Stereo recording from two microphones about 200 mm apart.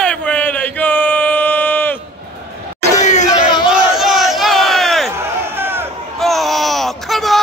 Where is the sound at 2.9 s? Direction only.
35° left (ahead or behind).